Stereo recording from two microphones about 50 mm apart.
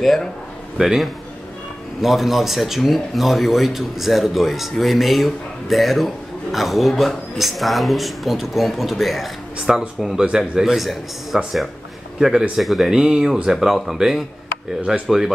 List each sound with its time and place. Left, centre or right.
0.7 s speech: centre
11.3 s speech: centre
12.9 s speech: centre